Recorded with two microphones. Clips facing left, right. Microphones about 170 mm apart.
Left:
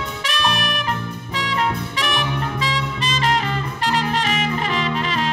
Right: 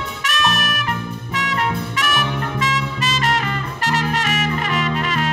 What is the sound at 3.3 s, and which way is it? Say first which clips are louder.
Music: left 1 dB; 30° left (ahead or behind).